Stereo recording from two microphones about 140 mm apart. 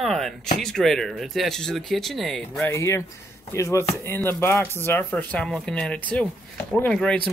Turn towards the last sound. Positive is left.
turn(degrees=5)  # may be behind; listen again after turning